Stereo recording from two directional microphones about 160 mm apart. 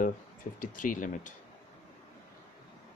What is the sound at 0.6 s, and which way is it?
Speech, 55° left (ahead or behind).